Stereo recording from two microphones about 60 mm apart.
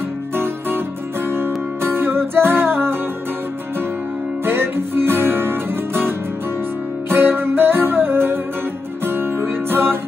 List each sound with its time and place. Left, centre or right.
0.4 s music: right
4.5 s music: right